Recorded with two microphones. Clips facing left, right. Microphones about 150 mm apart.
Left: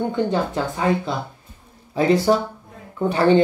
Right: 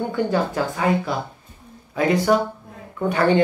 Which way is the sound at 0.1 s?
20° left (ahead or behind).